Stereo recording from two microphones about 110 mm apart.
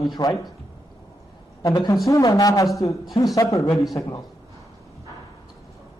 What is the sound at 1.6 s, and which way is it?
A man's voice, 35° left (ahead or behind).